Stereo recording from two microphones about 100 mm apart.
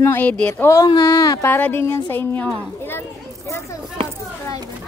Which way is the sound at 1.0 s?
40° left (ahead or behind).